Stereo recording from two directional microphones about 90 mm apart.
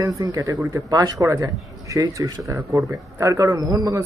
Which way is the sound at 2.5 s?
30° right (ahead or behind).